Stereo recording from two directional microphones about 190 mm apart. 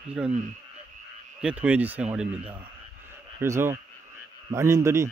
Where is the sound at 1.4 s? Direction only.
5° right (ahead or behind).